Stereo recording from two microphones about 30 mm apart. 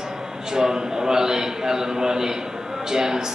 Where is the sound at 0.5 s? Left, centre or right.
Right.